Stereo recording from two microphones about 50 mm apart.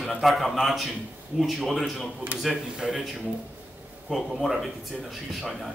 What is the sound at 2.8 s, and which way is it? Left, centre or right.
Speech, centre.